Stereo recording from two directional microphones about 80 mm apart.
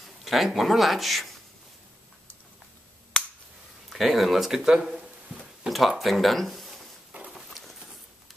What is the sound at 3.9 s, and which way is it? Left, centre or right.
Speech, centre.